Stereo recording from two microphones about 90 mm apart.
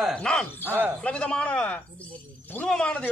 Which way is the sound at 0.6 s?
20° right (ahead or behind).